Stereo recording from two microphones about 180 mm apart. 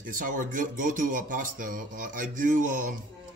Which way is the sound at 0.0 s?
50° right (ahead or behind).